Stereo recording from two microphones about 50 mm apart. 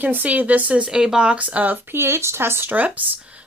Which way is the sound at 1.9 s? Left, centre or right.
Right.